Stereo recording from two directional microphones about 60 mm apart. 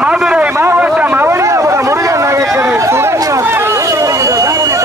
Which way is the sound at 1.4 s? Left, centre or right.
Right.